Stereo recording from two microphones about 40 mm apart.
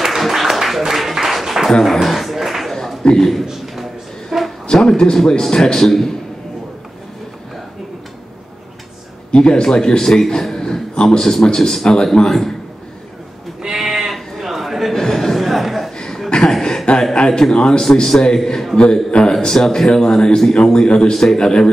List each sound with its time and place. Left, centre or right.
0.0 s applause: centre
1.7 s a man's voice: centre
2.0 s a sound: centre
3.0 s a man's voice: left
3.4 s a sound: centre
4.7 s a man's voice: centre
9.3 s a man's voice: centre
13.7 s sheep: centre
15.0 s chuckle: centre
16.3 s chuckle: left
16.5 s chuckle: centre
17.3 s a man's voice: centre
21.1 s a man's voice: centre